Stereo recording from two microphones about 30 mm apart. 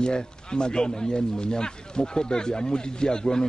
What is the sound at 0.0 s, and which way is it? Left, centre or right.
Speech, left.